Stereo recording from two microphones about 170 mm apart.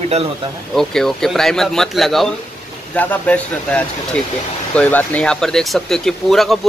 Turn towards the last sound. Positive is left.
turn(degrees=0)  # may be behind; listen again after turning